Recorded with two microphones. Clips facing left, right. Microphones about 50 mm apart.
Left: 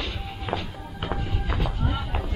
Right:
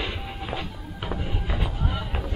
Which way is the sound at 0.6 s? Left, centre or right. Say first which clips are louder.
Even; centre.